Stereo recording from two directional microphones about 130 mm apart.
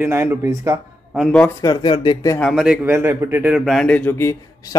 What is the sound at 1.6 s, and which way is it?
Speech, 35° left (ahead or behind).